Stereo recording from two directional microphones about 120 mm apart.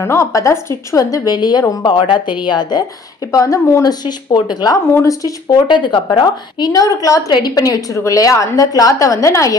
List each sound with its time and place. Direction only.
0.0 s a woman's voice: 25° left (ahead or behind); by 2.8 s 40° left (ahead or behind)
3.3 s a woman's voice: 25° left (ahead or behind)
3.8 s a woman's voice: 35° left (ahead or behind)
5.7 s a woman's voice: 40° left (ahead or behind)